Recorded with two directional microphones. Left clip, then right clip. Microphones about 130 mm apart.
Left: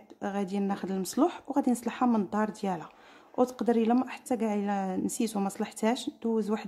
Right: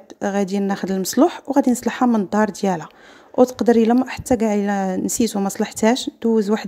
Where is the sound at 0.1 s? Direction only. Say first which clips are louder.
Right 12 dB; 30° right (ahead or behind).